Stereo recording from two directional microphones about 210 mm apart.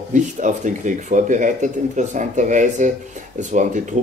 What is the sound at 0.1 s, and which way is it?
Speech, 35° right (ahead or behind).